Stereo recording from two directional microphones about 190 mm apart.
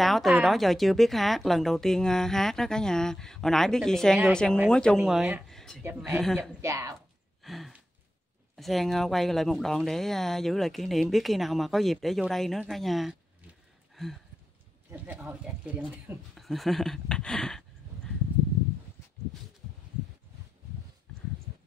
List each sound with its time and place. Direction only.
0.0 s speech: centre (ahead or behind)
6.6 s speech: 15° right (ahead or behind)
7.4 s a sound: centre (ahead or behind)
8.5 s speech: centre (ahead or behind)
13.9 s a sound: centre (ahead or behind)
14.9 s speech: 10° right (ahead or behind)